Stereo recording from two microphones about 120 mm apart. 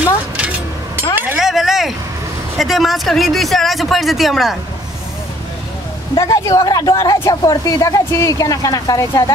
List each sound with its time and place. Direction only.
0.4 s a sound: 10° right (ahead or behind)
1.1 s vehicle: 5° right (ahead or behind)
2.5 s speech: centre (ahead or behind)
6.1 s speech: 25° left (ahead or behind)